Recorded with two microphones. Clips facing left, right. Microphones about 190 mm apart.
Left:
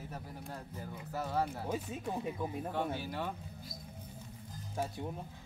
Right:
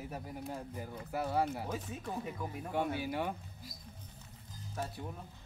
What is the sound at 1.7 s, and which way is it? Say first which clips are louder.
Speech: left 3 dB; 15° left (ahead or behind).